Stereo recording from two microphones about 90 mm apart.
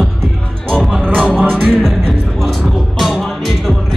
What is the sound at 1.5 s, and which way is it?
Music, 5° left (ahead or behind).